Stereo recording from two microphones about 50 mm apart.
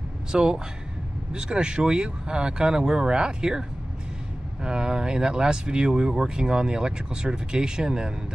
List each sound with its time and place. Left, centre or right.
0.3 s speech: centre
4.6 s speech: centre